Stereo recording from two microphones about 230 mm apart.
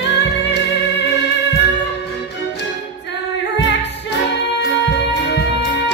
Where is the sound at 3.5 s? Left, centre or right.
Left.